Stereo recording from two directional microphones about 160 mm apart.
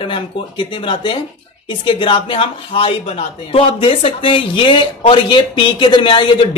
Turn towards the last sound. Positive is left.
turn(degrees=30)  # may be behind; listen again after turning